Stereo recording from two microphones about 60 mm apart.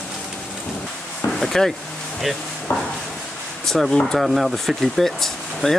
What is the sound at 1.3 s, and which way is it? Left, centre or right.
Speech, centre.